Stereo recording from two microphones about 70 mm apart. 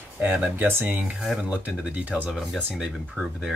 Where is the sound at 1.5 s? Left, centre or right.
Centre.